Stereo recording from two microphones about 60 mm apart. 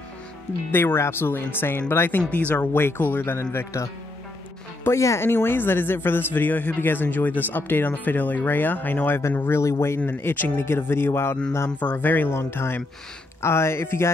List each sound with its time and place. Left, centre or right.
0.7 s a man's voice: left
4.8 s speech: left
5.3 s a man's voice: left
9.5 s speech: left
10.0 s a man's voice: left
11.8 s a man's voice: left
12.3 s speech: left